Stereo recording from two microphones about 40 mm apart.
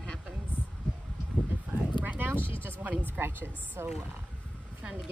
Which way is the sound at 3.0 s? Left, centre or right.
Right.